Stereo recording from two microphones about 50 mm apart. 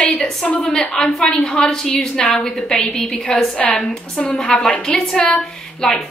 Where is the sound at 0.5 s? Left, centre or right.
Left.